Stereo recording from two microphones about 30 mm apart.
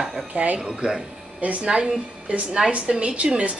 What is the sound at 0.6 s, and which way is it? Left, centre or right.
Speech, right.